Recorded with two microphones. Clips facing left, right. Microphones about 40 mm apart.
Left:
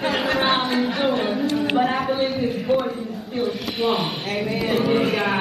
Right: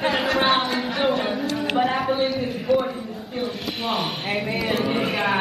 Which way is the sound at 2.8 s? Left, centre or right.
Centre.